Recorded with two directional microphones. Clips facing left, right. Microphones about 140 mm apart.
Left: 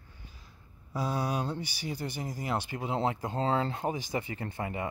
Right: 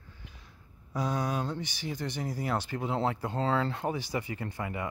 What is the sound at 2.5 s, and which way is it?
Speech, 15° left (ahead or behind).